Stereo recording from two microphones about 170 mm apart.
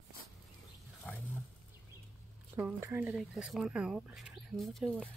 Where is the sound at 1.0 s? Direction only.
10° left (ahead or behind).